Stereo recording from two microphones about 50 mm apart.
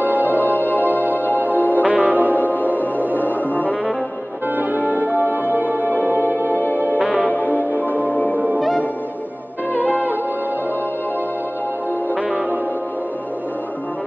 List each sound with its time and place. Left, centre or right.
0.0 s music: right
0.3 s music: left
1.9 s music: right
2.3 s music: left
4.6 s music: right
5.9 s music: left
9.8 s music: left